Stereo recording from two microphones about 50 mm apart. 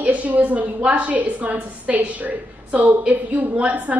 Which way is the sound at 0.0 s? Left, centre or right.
Right.